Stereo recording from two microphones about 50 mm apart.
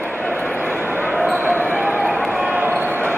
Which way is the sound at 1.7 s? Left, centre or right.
Right.